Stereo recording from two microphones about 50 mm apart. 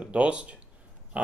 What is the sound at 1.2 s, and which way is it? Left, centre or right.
Dog, right.